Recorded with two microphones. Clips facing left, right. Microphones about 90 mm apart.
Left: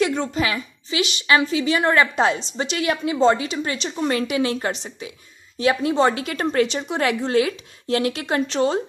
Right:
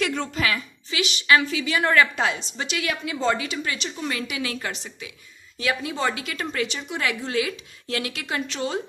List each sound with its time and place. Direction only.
0.0 s a woman's voice: 20° left (ahead or behind)